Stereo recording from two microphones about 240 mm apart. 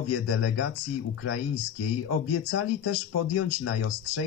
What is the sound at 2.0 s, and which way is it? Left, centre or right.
Speech, left.